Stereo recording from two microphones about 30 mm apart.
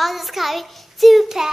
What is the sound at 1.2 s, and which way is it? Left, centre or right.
Child singing, centre.